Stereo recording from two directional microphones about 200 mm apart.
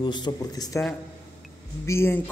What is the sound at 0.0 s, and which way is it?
Speech, 20° left (ahead or behind).